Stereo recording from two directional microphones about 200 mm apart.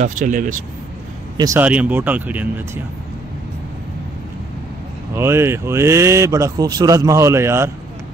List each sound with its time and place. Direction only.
0.0 s speech: 40° right (ahead or behind)
1.3 s speech: 15° right (ahead or behind)
5.1 s speech: 15° right (ahead or behind)